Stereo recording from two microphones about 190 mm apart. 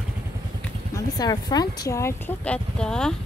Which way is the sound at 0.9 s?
20° left (ahead or behind).